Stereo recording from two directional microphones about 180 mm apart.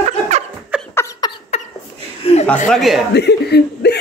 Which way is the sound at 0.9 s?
15° left (ahead or behind).